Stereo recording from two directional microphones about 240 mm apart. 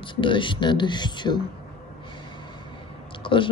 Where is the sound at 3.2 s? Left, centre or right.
Left.